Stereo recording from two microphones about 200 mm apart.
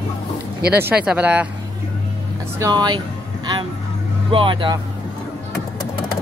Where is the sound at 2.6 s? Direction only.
20° right (ahead or behind).